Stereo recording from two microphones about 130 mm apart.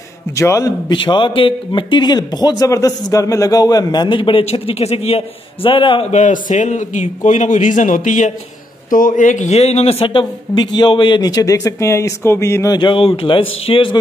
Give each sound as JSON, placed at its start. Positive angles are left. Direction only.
{"t": 0.4, "sound": "a man's voice", "side_deg": 25}
{"t": 1.1, "sound": "speech", "side_deg": 40}
{"t": 6.1, "sound": "a man's voice", "side_deg": 70}
{"t": 12.7, "sound": "speech", "side_deg": 40}